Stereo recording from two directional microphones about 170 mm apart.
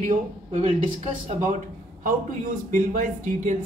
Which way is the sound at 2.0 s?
50° right (ahead or behind).